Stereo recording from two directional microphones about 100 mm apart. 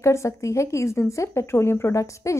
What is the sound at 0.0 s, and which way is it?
Speech, 30° left (ahead or behind).